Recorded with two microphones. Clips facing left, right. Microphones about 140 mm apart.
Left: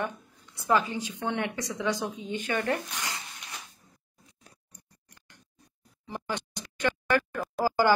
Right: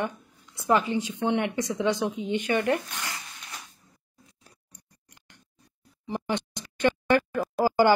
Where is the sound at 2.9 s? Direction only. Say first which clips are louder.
Even; 15° left (ahead or behind).